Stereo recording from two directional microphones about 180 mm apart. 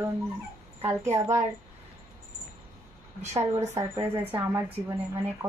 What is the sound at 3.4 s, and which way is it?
Speech, 15° right (ahead or behind).